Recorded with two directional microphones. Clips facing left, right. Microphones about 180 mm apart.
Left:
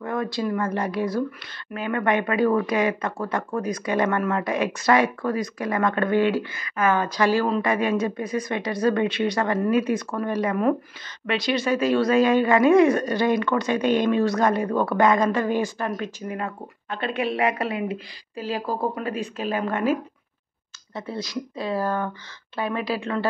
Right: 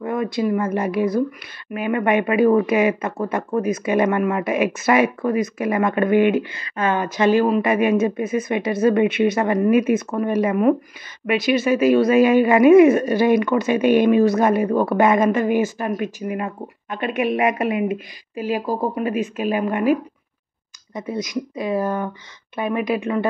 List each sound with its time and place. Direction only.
0.0 s speech: 15° right (ahead or behind)
6.5 s speech: 30° right (ahead or behind)
11.7 s speech: 15° right (ahead or behind)
12.4 s speech: 20° right (ahead or behind)